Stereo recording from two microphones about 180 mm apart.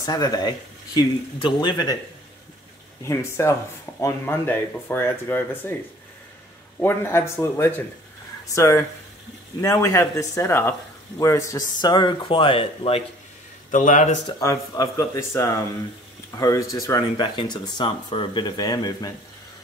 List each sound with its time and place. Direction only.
0.0 s speech: 20° left (ahead or behind)
3.0 s speech: 15° left (ahead or behind)
6.8 s speech: 15° left (ahead or behind); by 13.0 s 30° left (ahead or behind)
13.7 s speech: 45° left (ahead or behind)
14.4 s speech: 15° left (ahead or behind)